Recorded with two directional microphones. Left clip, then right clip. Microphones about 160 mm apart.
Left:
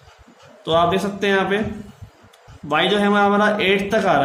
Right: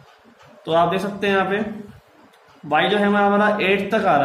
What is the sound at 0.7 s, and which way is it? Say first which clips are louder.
Speech: left 1 dB; 20° left (ahead or behind).